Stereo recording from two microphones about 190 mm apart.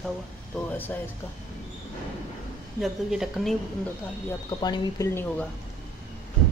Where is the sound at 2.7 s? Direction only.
Centre (ahead or behind).